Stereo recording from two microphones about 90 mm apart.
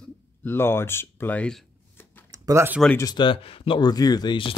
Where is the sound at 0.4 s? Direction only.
25° left (ahead or behind).